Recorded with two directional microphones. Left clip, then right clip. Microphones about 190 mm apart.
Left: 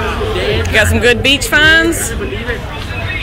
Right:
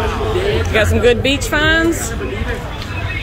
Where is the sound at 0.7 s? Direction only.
15° right (ahead or behind).